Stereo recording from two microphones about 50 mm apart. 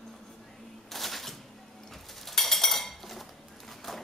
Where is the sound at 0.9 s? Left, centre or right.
Centre.